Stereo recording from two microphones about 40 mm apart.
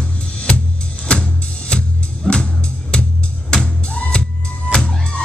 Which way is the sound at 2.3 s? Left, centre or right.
Centre.